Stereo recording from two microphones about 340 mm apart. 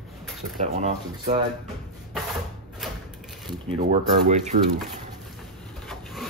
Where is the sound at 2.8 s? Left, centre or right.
Centre.